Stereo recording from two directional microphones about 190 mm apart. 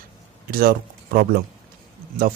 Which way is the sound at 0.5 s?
55° right (ahead or behind).